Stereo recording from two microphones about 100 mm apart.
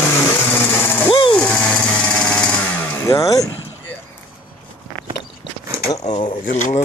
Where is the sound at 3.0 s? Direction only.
35° left (ahead or behind).